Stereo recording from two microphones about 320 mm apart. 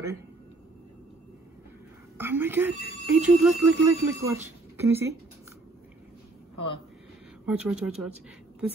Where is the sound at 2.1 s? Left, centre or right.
Centre.